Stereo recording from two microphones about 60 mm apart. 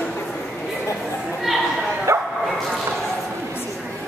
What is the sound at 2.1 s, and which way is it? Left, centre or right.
Bow-wow, right.